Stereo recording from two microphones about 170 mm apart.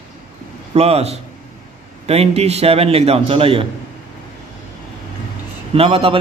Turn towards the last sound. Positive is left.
turn(degrees=-35)  # may be behind; listen again after turning